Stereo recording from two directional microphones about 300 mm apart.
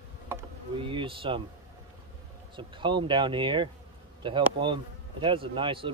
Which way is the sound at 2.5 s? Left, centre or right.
Centre.